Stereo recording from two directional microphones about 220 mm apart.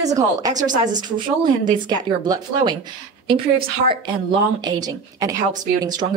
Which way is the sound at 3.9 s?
20° right (ahead or behind).